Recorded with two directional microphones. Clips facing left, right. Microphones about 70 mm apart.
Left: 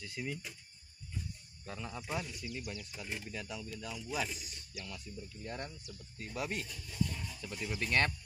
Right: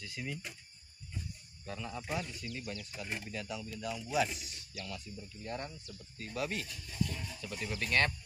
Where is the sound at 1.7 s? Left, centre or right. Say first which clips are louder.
Right 1 dB; centre.